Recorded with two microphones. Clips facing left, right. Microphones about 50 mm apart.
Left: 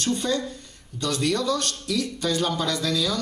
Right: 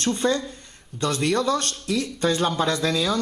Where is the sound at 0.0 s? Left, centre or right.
Right.